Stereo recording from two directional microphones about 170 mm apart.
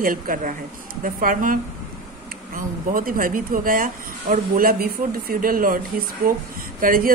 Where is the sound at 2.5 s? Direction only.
55° right (ahead or behind).